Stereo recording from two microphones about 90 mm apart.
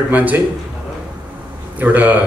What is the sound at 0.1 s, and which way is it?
Speech, 20° right (ahead or behind).